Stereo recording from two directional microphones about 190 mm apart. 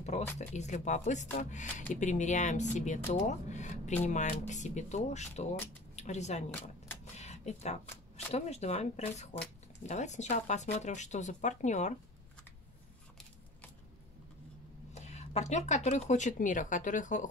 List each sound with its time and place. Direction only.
0.4 s speech: 35° left (ahead or behind)
7.2 s a sound: 35° left (ahead or behind)
8.3 s speech: 35° left (ahead or behind)
15.0 s speech: 35° left (ahead or behind)